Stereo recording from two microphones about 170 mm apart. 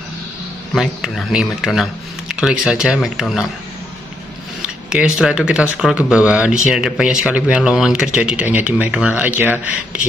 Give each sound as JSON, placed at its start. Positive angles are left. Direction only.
{"t": 0.7, "sound": "speech", "side_deg": -5}
{"t": 4.6, "sound": "speech", "side_deg": -5}